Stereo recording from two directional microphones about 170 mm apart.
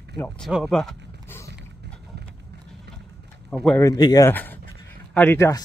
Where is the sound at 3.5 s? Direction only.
5° left (ahead or behind).